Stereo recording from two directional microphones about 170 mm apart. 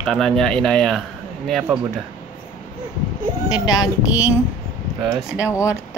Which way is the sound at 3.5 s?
25° left (ahead or behind).